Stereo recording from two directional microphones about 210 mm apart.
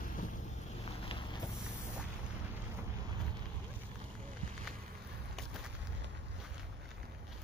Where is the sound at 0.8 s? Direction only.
25° left (ahead or behind).